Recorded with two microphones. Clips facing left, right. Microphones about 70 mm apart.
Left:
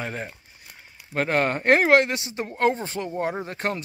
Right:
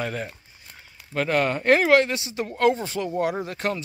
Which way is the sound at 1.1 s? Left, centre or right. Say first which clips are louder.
Even; left.